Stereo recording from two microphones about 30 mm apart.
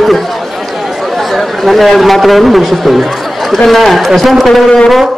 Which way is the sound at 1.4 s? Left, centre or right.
Centre.